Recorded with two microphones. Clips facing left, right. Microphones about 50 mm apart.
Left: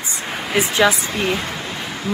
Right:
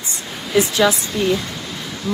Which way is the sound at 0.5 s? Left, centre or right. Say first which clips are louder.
Right 1 dB; left.